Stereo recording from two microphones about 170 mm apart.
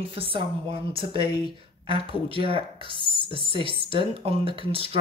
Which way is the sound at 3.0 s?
30° left (ahead or behind).